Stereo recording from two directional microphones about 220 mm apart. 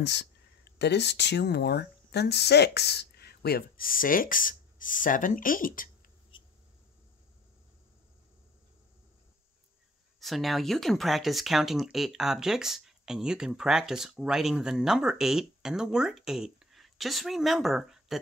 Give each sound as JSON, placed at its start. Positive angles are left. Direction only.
{"t": 0.0, "sound": "speech", "side_deg": 50}
{"t": 6.3, "sound": "a sound", "side_deg": 20}
{"t": 10.2, "sound": "speech", "side_deg": 0}